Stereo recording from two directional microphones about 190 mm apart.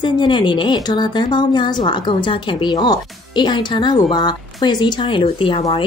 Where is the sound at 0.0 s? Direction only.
25° left (ahead or behind).